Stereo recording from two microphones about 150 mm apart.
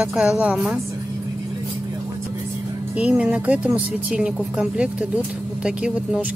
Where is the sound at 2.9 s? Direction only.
10° right (ahead or behind).